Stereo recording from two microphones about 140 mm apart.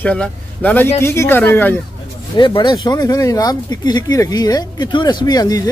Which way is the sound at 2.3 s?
35° left (ahead or behind).